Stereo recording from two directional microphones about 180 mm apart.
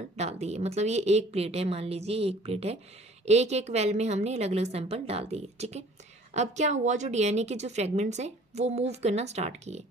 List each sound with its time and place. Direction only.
0.1 s a woman's voice: 35° right (ahead or behind)